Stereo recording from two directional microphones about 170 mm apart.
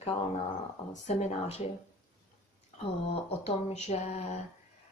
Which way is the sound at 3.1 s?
40° left (ahead or behind).